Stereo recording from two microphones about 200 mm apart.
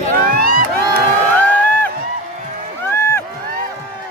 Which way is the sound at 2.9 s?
10° left (ahead or behind).